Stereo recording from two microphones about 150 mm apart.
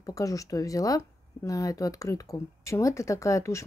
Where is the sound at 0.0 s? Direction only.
20° left (ahead or behind).